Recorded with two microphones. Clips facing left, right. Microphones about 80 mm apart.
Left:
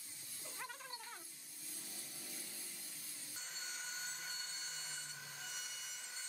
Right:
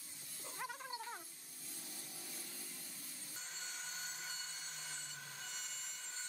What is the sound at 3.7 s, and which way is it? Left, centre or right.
Wood, centre.